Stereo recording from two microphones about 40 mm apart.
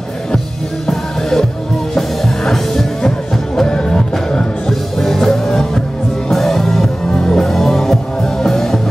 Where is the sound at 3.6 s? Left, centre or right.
Left.